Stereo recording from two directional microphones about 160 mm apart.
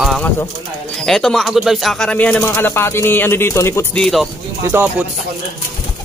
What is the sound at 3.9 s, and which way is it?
Speech, centre (ahead or behind).